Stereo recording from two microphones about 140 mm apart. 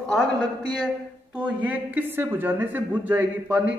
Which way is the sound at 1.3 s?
10° right (ahead or behind).